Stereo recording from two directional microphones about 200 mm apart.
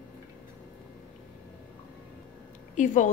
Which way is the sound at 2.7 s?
40° left (ahead or behind).